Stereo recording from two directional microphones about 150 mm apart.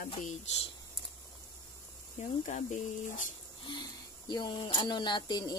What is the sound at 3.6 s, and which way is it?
Speech, 30° left (ahead or behind).